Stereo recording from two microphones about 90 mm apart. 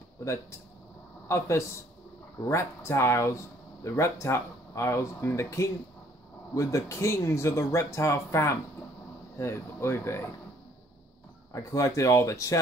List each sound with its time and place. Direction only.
1.3 s speech: 30° left (ahead or behind)
11.5 s speech: 35° left (ahead or behind)